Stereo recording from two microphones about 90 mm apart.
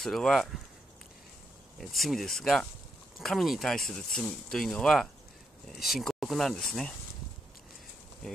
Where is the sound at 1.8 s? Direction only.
Centre (ahead or behind).